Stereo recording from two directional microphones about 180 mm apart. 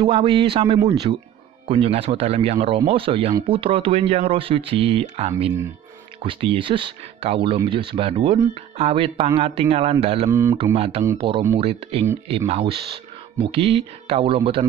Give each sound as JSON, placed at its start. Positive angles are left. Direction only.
{"t": 0.0, "sound": "a man's voice", "side_deg": -30}